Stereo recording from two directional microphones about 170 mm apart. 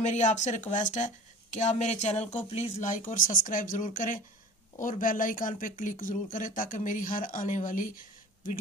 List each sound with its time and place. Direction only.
0.0 s speech: 45° left (ahead or behind)